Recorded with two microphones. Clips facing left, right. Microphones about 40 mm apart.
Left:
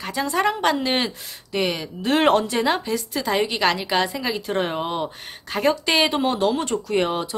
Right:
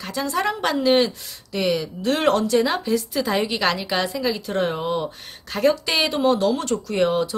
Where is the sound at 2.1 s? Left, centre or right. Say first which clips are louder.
Left 1 dB; left.